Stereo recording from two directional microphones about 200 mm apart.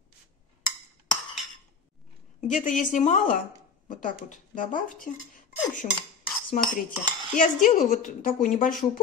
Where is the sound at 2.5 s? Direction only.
40° left (ahead or behind).